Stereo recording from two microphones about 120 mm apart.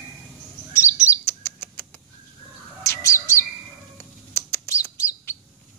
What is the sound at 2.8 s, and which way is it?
Bird, 25° left (ahead or behind).